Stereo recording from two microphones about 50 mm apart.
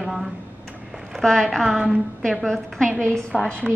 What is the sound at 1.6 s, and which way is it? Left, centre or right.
Speech, centre.